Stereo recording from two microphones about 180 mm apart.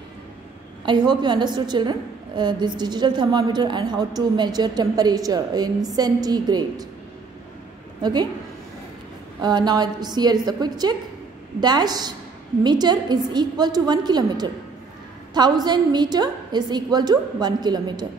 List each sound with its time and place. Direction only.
0.8 s a woman's voice: 25° right (ahead or behind)
8.0 s a woman's voice: 25° right (ahead or behind)
9.4 s a woman's voice: 25° right (ahead or behind)